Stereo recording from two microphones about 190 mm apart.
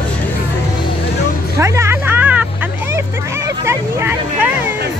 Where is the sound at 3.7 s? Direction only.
15° right (ahead or behind).